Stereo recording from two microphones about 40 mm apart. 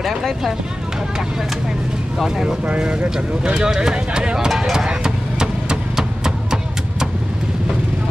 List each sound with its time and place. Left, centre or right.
2.2 s speech: centre
3.5 s speech: centre
4.6 s vehicle: centre